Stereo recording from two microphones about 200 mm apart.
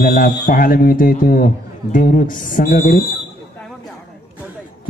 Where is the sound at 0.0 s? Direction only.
45° left (ahead or behind).